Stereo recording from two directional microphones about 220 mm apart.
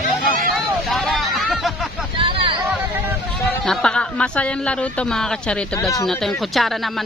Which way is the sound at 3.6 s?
5° left (ahead or behind).